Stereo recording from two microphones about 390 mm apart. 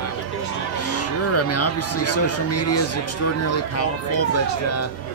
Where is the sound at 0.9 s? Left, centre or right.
Left.